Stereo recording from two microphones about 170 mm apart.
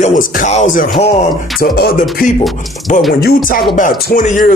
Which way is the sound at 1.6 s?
60° left (ahead or behind).